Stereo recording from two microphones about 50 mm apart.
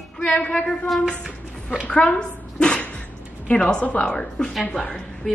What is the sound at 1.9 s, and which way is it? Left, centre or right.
A woman's voice, left.